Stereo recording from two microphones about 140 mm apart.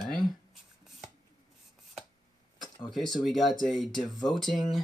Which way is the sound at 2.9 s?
Centre (ahead or behind).